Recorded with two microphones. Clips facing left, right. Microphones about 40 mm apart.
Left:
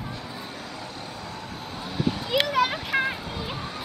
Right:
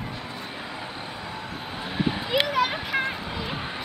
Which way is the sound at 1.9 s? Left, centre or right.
Right.